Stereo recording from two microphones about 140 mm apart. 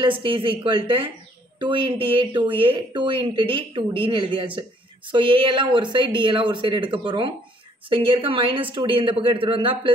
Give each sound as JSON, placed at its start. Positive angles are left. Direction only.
{"t": 0.0, "sound": "speech", "side_deg": -35}